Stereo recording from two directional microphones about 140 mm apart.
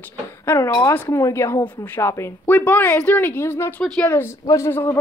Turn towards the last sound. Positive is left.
turn(degrees=20)  # may be behind; listen again after turning